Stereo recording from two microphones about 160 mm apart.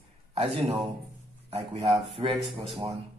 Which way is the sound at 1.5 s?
35° right (ahead or behind).